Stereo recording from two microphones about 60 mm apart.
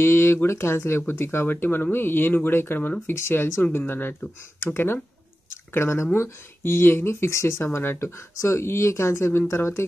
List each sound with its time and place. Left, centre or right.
0.0 s speech: left